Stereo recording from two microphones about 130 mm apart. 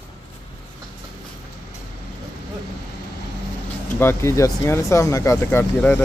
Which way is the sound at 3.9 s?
20° left (ahead or behind).